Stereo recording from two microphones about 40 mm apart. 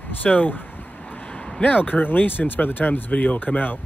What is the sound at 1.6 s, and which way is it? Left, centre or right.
Speech, left.